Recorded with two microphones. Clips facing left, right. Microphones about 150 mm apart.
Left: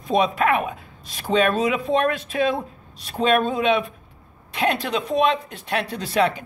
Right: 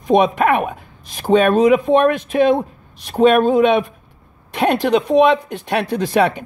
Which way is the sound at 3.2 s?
60° right (ahead or behind).